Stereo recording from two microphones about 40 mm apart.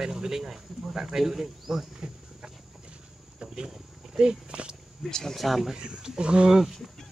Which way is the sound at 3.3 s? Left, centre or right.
Centre.